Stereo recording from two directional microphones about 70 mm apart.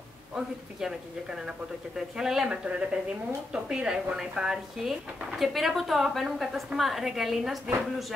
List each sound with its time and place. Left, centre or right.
0.3 s a woman's voice: centre